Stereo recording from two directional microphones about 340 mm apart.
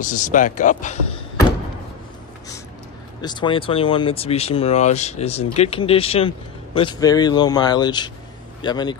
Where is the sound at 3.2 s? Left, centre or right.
Centre.